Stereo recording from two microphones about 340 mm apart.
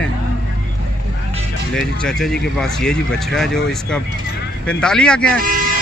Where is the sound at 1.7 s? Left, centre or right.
Centre.